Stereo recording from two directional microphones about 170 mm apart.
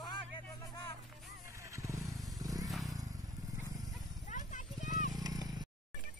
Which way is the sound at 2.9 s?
20° right (ahead or behind).